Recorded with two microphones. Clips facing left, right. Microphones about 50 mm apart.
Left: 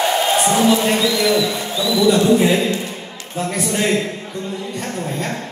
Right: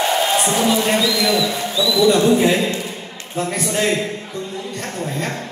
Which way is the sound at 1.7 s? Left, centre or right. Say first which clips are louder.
Right 1 dB; left.